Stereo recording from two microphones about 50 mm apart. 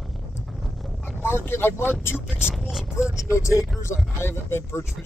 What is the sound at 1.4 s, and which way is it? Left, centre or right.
Speech, left.